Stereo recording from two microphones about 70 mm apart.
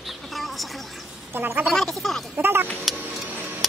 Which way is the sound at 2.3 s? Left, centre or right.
Right.